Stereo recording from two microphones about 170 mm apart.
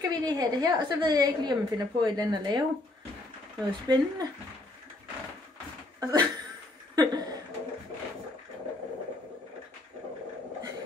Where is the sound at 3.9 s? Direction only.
25° right (ahead or behind).